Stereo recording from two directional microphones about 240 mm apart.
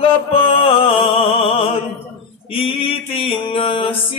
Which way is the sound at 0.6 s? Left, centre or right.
Left.